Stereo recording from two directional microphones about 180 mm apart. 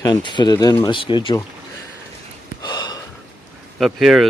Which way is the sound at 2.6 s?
25° left (ahead or behind).